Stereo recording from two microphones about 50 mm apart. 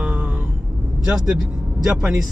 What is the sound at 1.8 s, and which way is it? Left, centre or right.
Speech, centre.